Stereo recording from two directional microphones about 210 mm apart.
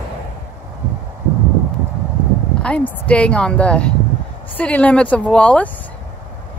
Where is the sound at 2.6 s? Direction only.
5° left (ahead or behind).